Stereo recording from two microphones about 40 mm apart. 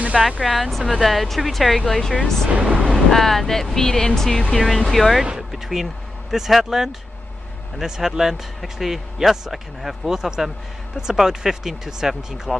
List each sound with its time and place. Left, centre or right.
0.1 s speech: centre
2.5 s speech: right
2.9 s speech: centre
5.5 s a sound: centre
6.3 s speech: centre